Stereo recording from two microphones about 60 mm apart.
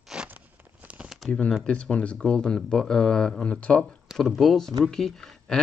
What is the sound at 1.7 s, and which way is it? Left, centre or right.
Speech, centre.